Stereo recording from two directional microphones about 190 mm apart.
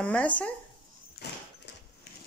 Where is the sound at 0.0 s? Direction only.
5° left (ahead or behind).